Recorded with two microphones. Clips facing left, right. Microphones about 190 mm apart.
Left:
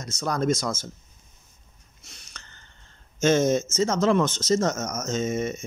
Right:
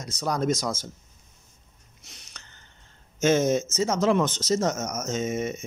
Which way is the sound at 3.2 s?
10° right (ahead or behind).